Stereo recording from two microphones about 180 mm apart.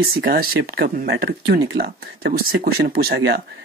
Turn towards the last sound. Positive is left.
turn(degrees=-65)  # may be behind; listen again after turning